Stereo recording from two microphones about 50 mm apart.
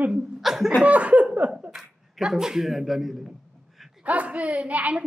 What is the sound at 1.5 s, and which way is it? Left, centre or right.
Speech, centre.